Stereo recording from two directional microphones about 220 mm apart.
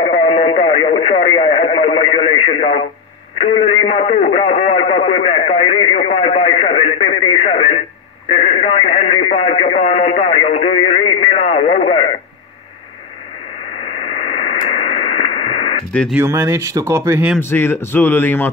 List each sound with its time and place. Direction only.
0.0 s radio: 30° left (ahead or behind)
3.3 s a sound: 25° left (ahead or behind)
8.3 s radio: 25° left (ahead or behind)
13.9 s radio: 25° left (ahead or behind)
15.9 s speech: 5° left (ahead or behind)
16.2 s speech: 10° right (ahead or behind)
17.4 s speech: 10° left (ahead or behind)